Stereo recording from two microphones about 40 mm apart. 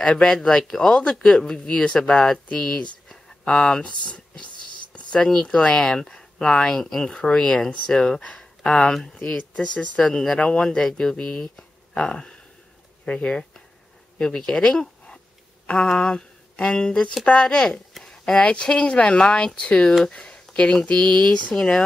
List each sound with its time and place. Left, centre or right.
0.1 s speech: centre
5.2 s speech: centre
5.6 s speech: left
5.9 s speech: centre
7.1 s speech: left
7.6 s speech: centre; by 13.3 s left
14.2 s speech: centre
17.9 s a sound: centre
18.5 s speech: left
20.2 s a sound: left
20.8 s speech: left
21.1 s speech: centre